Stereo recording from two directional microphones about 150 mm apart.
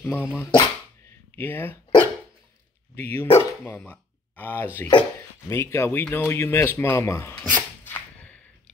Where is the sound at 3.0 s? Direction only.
15° left (ahead or behind).